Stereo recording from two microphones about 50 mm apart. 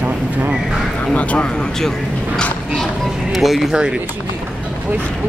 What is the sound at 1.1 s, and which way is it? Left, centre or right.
Speech, left.